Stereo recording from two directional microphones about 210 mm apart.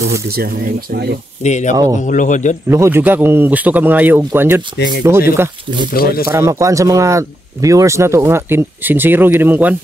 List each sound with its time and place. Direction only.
0.4 s speech: 45° right (ahead or behind)
1.4 s speech: 35° left (ahead or behind)
2.7 s speech: 10° right (ahead or behind)
5.9 s speech: 45° left (ahead or behind)
6.2 s speech: 15° right (ahead or behind)